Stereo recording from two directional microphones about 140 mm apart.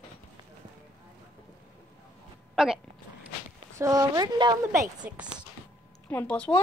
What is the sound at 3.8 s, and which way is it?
Speech, 25° right (ahead or behind).